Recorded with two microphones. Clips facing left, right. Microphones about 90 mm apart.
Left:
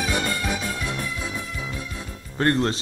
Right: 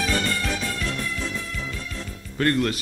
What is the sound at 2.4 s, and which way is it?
Speech, 30° left (ahead or behind).